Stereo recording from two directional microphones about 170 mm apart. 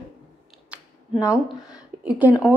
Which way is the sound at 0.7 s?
5° right (ahead or behind).